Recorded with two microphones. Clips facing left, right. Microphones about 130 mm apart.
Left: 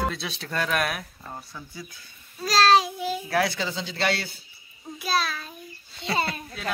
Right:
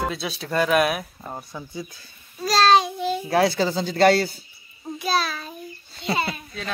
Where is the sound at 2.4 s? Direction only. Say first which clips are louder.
Right 2 dB; centre (ahead or behind).